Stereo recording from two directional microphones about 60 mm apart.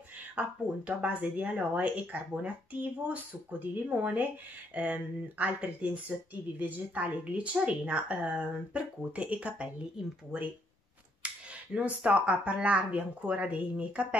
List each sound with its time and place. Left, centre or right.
0.4 s speech: right
11.2 s a sound: right
11.7 s speech: right